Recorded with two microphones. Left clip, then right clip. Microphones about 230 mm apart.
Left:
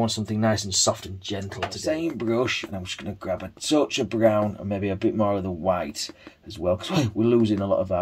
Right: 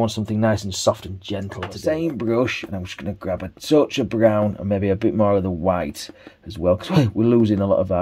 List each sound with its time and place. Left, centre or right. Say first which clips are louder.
0.0 s speech: right 3 dB; right